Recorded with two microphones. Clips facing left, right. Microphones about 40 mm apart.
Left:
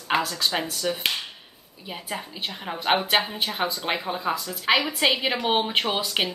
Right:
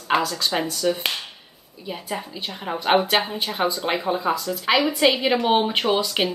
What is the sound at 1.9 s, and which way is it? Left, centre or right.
Speech, centre.